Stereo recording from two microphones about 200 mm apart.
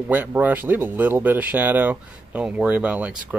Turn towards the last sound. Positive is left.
turn(degrees=-5)  # may be behind; listen again after turning